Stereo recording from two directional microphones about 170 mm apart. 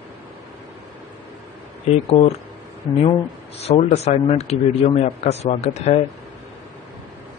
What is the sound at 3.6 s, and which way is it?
Speech, 40° left (ahead or behind).